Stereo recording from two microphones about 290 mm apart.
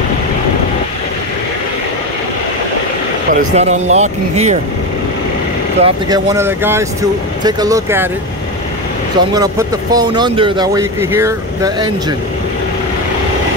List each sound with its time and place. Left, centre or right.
3.3 s speech: right
5.8 s speech: centre
9.3 s speech: centre